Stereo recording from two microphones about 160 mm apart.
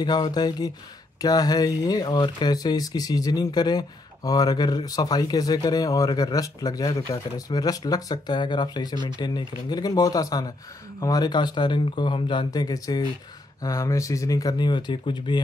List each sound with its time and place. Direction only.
0.0 s speech: 25° left (ahead or behind)